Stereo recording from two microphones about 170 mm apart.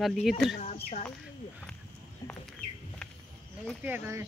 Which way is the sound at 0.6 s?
40° left (ahead or behind).